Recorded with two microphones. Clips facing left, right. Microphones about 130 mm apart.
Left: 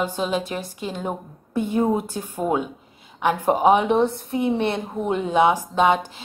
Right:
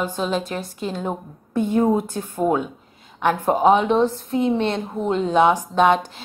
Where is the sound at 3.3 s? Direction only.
15° left (ahead or behind).